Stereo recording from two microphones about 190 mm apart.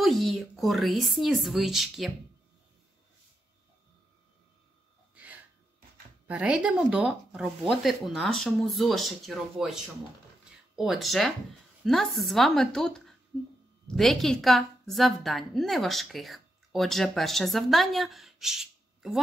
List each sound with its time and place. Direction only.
0.0 s a woman's voice: centre (ahead or behind)
5.1 s gasp: 10° right (ahead or behind)
6.2 s a woman's voice: 5° right (ahead or behind)
10.8 s a woman's voice: centre (ahead or behind)